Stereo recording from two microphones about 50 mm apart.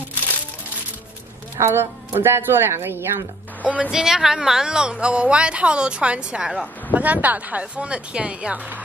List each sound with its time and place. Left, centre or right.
1.6 s a woman's voice: right
3.6 s speech: right
3.9 s speech: centre
6.9 s speech: right